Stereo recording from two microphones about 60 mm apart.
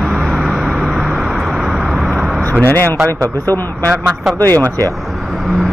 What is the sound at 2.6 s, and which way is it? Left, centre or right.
Speech, left.